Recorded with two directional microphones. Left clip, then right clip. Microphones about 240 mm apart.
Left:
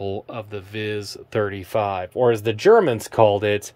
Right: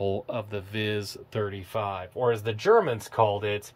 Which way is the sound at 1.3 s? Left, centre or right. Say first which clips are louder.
Left 9 dB; centre.